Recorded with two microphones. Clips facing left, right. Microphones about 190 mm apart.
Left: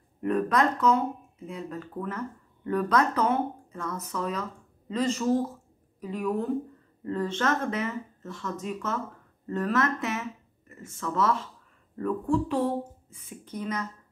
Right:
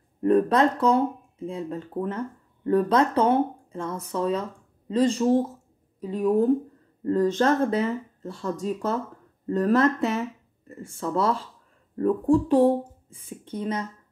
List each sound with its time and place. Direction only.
0.2 s speech: 30° right (ahead or behind)